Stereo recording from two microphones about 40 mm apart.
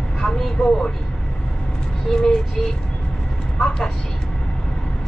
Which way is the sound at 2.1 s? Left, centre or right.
Centre.